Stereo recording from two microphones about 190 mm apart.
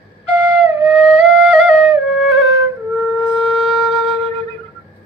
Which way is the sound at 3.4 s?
Centre (ahead or behind).